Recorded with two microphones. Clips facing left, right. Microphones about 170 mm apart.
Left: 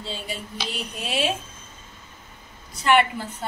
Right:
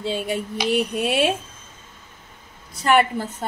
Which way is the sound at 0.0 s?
60° right (ahead or behind).